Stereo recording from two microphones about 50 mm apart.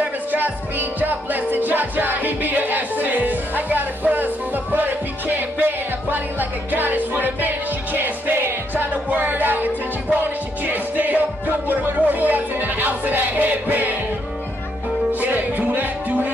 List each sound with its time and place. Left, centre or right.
0.0 s music: right
8.9 s music: right
15.1 s music: right